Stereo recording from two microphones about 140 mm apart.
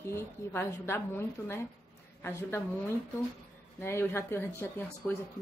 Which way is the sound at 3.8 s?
15° left (ahead or behind).